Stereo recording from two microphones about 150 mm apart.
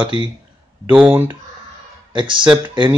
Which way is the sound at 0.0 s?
35° right (ahead or behind).